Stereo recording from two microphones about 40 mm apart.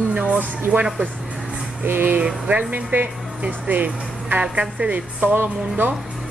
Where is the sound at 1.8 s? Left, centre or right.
Right.